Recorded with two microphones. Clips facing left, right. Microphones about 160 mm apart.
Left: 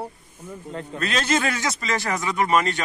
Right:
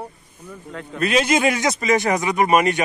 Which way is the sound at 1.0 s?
10° right (ahead or behind).